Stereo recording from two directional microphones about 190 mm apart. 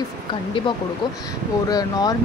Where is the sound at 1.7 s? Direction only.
20° left (ahead or behind).